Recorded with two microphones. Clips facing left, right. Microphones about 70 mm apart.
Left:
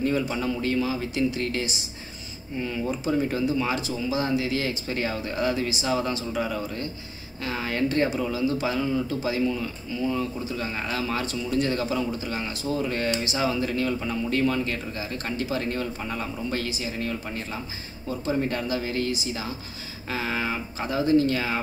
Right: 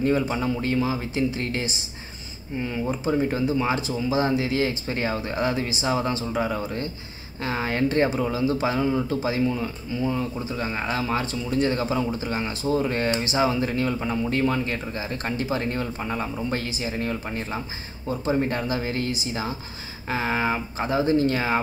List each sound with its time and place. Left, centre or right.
0.3 s speech: right